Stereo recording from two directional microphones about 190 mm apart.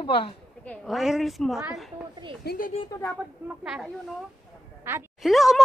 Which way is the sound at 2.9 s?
15° left (ahead or behind).